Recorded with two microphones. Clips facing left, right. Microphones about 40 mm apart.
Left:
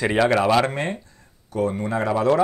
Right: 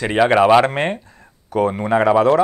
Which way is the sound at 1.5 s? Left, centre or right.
Right.